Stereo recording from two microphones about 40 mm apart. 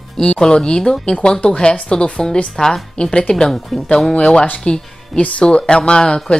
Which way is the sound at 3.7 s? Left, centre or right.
Centre.